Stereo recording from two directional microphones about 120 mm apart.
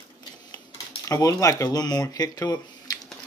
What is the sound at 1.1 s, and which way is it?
Speech, 30° left (ahead or behind).